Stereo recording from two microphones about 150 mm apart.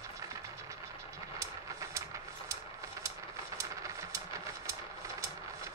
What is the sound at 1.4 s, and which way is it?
Vehicle, 20° right (ahead or behind).